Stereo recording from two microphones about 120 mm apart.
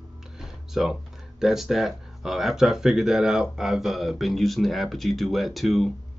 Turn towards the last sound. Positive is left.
turn(degrees=0)  # may be behind; listen again after turning